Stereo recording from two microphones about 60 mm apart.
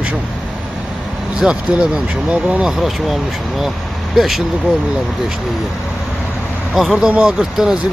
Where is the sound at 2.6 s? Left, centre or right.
Centre.